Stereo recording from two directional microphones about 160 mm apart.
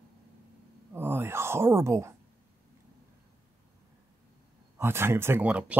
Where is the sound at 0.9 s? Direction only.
15° right (ahead or behind).